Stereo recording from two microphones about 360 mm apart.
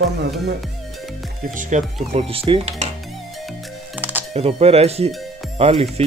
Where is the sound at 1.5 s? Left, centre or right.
Right.